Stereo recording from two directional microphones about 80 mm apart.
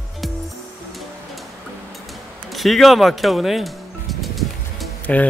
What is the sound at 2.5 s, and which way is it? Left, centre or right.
Speech, centre.